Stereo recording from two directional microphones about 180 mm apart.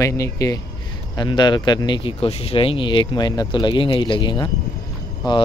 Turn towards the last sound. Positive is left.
turn(degrees=20)  # may be behind; listen again after turning